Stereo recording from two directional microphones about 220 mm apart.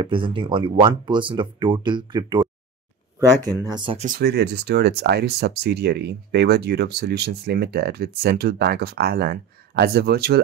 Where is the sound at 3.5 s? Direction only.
20° right (ahead or behind).